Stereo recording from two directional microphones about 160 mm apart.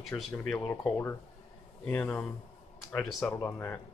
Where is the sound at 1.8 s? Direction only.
10° left (ahead or behind).